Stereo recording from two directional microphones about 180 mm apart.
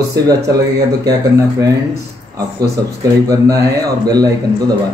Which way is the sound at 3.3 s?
20° right (ahead or behind).